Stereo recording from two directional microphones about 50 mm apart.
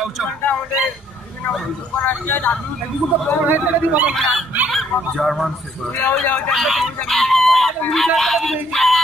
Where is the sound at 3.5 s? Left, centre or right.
Right.